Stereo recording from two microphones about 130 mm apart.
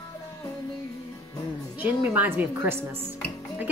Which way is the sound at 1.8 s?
15° right (ahead or behind).